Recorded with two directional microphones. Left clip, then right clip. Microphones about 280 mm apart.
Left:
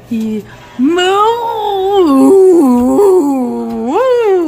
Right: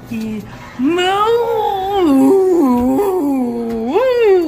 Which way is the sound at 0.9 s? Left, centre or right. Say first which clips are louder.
Left 4 dB; left.